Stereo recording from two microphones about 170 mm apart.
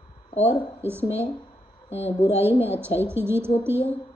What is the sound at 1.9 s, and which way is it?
Speech, 35° left (ahead or behind).